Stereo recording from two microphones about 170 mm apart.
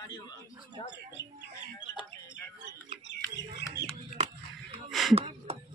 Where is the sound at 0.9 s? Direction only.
90° left.